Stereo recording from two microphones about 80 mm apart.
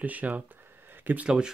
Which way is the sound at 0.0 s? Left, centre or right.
Centre.